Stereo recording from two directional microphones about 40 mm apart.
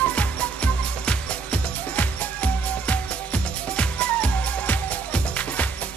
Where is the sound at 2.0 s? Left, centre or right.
Left.